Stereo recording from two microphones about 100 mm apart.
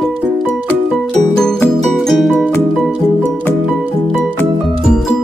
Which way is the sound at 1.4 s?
5° left (ahead or behind).